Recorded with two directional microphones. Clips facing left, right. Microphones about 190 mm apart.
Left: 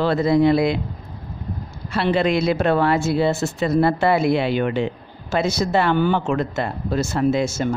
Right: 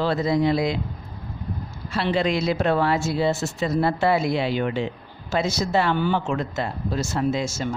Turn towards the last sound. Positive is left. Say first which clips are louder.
# left 5 dB
turn(degrees=55)  # may be behind; listen again after turning